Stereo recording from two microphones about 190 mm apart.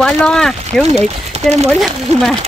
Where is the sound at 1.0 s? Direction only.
35° right (ahead or behind).